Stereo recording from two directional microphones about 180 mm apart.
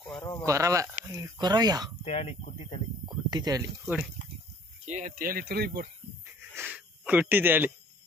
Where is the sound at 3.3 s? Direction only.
20° right (ahead or behind).